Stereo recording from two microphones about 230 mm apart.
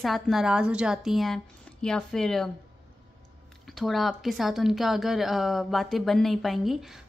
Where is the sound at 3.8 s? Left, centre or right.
Centre.